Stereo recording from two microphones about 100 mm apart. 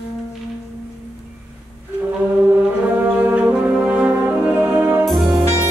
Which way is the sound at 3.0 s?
15° right (ahead or behind).